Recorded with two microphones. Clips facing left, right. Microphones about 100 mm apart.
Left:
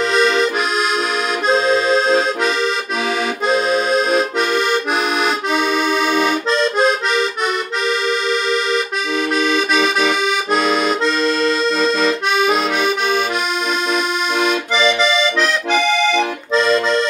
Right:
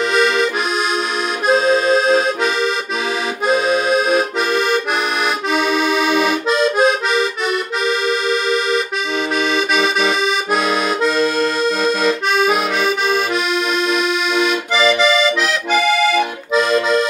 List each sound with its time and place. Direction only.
0.1 s accordion: 5° right (ahead or behind)
1.5 s accordion: 5° right (ahead or behind)
9.8 s accordion: 5° right (ahead or behind)
15.0 s accordion: 5° right (ahead or behind)